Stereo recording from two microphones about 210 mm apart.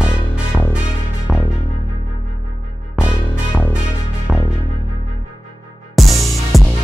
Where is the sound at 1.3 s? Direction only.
Centre (ahead or behind).